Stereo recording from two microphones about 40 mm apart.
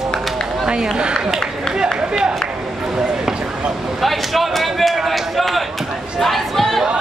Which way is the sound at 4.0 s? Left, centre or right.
Centre.